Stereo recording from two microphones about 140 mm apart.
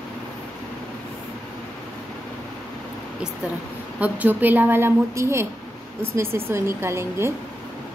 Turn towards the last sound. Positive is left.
turn(degrees=-20)  # may be behind; listen again after turning